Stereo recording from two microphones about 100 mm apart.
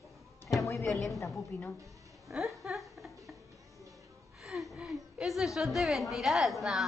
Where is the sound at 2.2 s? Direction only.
5° right (ahead or behind).